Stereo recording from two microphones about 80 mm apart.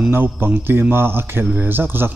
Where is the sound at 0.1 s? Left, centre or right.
Right.